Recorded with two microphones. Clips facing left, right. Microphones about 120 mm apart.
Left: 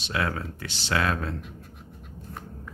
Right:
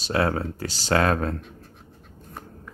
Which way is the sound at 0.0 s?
35° right (ahead or behind).